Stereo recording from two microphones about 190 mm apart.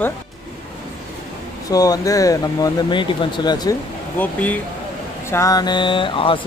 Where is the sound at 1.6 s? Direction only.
20° left (ahead or behind).